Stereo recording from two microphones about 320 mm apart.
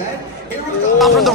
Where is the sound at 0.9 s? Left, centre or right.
Centre.